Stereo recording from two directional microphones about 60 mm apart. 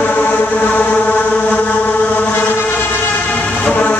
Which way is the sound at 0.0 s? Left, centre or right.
Left.